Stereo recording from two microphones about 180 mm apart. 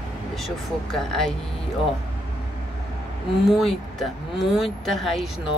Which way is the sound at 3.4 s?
Centre (ahead or behind).